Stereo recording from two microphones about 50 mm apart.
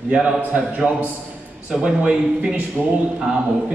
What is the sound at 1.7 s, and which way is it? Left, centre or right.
Speech, centre.